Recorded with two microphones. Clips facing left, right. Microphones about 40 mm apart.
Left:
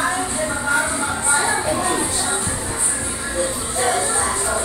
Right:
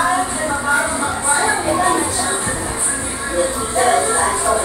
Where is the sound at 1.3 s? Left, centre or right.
Right.